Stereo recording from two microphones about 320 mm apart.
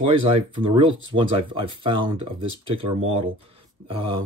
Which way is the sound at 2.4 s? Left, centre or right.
Right.